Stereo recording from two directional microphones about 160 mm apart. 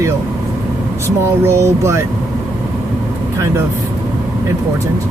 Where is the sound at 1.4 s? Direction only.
15° right (ahead or behind).